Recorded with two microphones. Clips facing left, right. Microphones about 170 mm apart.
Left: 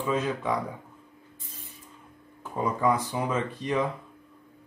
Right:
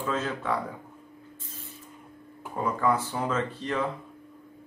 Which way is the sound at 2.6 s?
15° left (ahead or behind).